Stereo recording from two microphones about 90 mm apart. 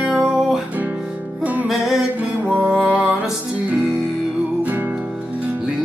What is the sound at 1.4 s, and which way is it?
Music, 15° right (ahead or behind).